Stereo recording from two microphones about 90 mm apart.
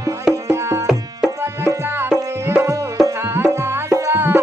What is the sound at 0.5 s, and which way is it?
Music, 30° right (ahead or behind).